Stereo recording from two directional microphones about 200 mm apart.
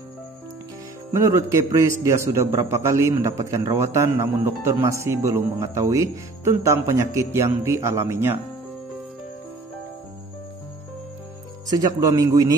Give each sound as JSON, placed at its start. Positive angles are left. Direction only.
{"t": 1.1, "sound": "a man's voice", "side_deg": -15}
{"t": 11.7, "sound": "a man's voice", "side_deg": -20}